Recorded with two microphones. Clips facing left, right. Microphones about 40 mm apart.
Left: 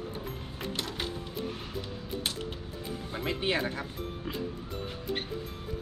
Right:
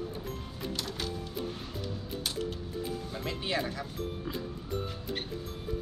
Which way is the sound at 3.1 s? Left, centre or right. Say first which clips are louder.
Left 6 dB; left.